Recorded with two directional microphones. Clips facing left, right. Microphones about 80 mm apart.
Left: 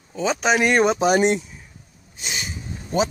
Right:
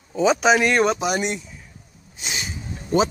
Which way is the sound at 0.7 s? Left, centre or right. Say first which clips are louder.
Left 1 dB; centre.